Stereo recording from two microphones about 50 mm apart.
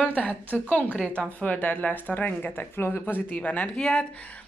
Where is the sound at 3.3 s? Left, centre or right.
Left.